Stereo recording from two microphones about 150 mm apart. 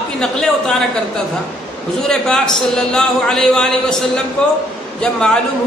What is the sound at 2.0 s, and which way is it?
A man's voice, 5° left (ahead or behind).